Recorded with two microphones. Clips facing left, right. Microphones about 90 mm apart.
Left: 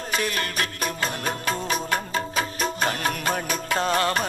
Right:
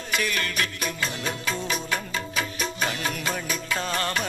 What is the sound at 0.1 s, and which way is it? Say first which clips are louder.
Music: even; 35° left (ahead or behind).